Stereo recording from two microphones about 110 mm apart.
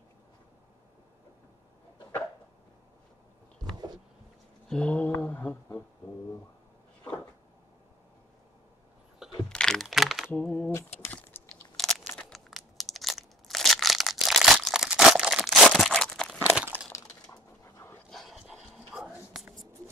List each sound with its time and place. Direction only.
4.6 s a sound: 10° left (ahead or behind)
9.5 s computer keyboard: 5° left (ahead or behind)
10.3 s a sound: 10° left (ahead or behind)
11.0 s typing: 20° left (ahead or behind)
11.7 s crunch: 5° left (ahead or behind)
12.2 s crushing: centre (ahead or behind)
16.4 s crack: 15° right (ahead or behind)
16.9 s a sound: 30° left (ahead or behind)
18.1 s dog: centre (ahead or behind)